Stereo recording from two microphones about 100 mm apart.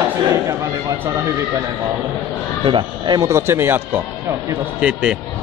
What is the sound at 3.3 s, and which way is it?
Speech, 25° right (ahead or behind).